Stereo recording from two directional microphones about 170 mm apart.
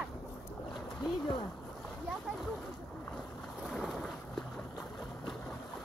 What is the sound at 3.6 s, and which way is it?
Boat, centre (ahead or behind).